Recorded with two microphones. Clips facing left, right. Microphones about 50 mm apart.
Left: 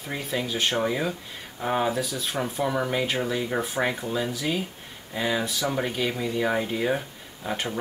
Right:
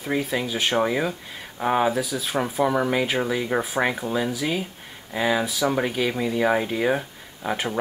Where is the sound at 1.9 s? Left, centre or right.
Centre.